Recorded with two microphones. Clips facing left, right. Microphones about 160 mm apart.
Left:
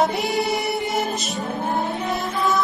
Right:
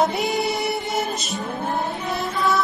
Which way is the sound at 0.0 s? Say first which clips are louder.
Even; centre (ahead or behind).